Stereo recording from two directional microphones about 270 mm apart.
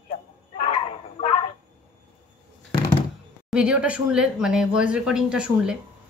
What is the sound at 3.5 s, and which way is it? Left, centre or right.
A woman's voice, centre.